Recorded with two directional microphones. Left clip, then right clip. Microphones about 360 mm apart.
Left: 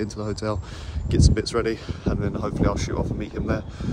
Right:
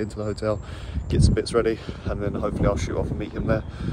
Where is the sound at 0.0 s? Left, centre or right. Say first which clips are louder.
Right 1 dB; centre.